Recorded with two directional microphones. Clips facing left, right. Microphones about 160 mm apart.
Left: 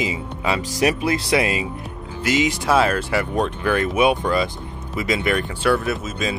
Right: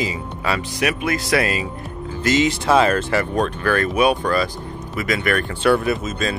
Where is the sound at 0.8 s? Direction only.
30° left (ahead or behind).